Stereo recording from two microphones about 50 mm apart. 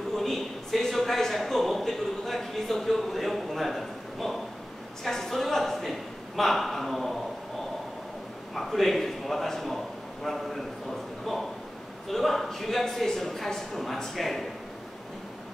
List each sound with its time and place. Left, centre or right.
0.1 s a sound: centre
8.5 s a man's voice: centre
12.1 s a man's voice: centre